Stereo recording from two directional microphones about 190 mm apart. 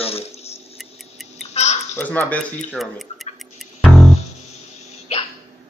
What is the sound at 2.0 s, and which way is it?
Speech, 10° left (ahead or behind).